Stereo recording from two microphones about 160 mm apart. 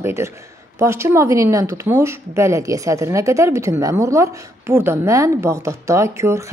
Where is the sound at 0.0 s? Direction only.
15° right (ahead or behind).